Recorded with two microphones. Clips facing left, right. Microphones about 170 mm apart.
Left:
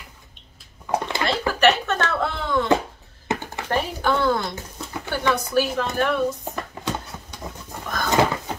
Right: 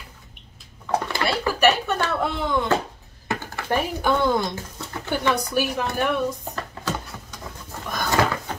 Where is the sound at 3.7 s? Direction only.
15° right (ahead or behind).